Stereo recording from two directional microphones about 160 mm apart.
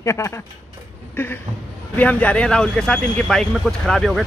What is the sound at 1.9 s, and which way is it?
Speech, 10° left (ahead or behind).